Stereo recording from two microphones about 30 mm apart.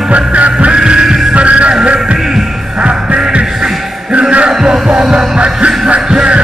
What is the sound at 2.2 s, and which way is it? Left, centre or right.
Music, centre.